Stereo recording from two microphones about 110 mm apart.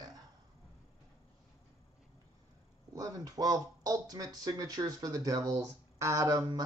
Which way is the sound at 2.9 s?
35° right (ahead or behind).